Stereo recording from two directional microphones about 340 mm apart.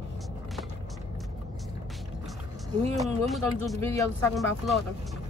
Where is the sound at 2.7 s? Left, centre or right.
Centre.